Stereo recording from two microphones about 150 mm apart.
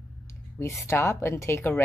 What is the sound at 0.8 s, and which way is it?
A woman's voice, 15° left (ahead or behind).